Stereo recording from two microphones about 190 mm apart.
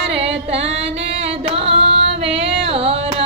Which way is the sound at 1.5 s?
30° right (ahead or behind).